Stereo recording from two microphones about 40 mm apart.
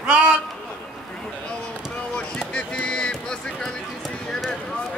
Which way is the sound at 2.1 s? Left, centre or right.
Left.